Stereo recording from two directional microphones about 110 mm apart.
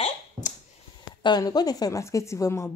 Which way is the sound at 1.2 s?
40° left (ahead or behind).